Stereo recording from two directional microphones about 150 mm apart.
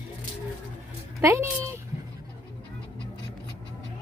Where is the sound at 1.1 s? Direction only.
20° right (ahead or behind).